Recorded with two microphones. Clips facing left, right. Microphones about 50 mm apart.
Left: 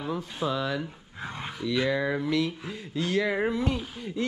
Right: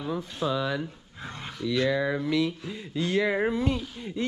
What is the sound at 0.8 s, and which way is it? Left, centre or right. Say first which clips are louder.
Speech: left 2 dB; centre.